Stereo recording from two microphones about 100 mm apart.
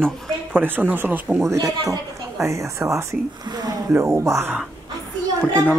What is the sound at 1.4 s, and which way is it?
Speech, 30° right (ahead or behind).